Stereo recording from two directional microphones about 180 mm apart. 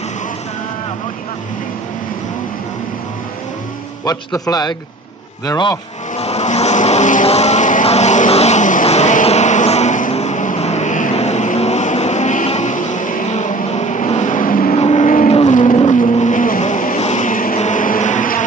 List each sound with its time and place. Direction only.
4.0 s a man's voice: 20° left (ahead or behind)
6.1 s vehicle: 35° left (ahead or behind)